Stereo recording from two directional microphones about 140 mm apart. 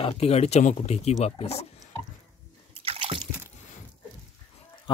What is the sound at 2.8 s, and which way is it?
Water, 40° right (ahead or behind).